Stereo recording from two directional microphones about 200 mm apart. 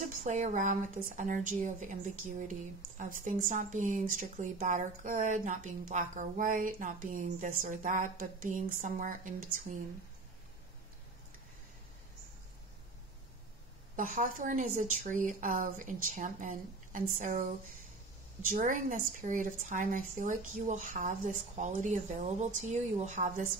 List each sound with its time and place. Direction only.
0.2 s a woman's voice: 40° right (ahead or behind)
13.9 s a woman's voice: 40° right (ahead or behind)
18.4 s a woman's voice: 40° right (ahead or behind)